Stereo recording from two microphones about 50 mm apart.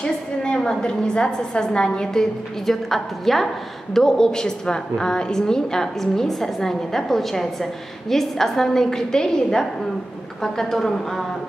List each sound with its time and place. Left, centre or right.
0.0 s a woman's voice: centre
2.6 s a woman's voice: centre